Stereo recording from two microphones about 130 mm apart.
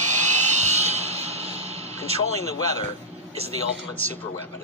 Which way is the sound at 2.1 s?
55° right (ahead or behind).